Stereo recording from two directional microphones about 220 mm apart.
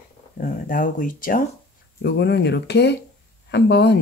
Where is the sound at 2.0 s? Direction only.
50° left (ahead or behind).